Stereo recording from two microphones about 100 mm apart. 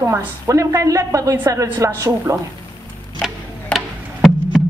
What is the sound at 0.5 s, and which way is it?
A woman's voice, 30° right (ahead or behind).